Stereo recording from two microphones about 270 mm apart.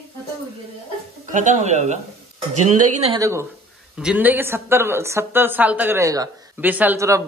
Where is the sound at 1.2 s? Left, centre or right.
Right.